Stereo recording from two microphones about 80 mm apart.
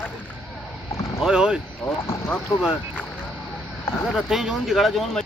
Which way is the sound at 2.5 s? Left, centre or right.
Left.